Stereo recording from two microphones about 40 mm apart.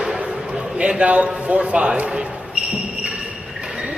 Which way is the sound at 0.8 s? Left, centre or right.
Right.